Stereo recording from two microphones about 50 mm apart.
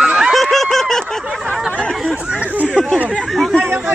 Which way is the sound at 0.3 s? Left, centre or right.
Centre.